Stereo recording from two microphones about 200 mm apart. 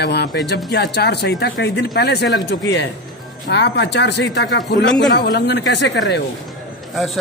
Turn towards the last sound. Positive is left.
turn(degrees=0)  # may be behind; listen again after turning